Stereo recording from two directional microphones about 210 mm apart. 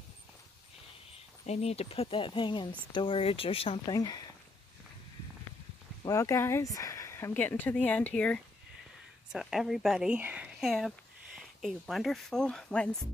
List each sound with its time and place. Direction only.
1.4 s speech: 30° left (ahead or behind)
6.0 s speech: 15° left (ahead or behind)